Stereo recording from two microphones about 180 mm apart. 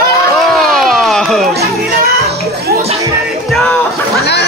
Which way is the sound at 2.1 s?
60° right (ahead or behind).